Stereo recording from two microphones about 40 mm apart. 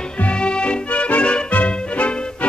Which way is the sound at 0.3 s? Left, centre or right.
Left.